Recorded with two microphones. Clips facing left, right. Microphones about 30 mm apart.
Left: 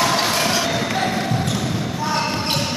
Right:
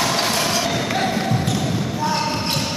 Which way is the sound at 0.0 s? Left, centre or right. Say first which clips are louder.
Left 1 dB; centre.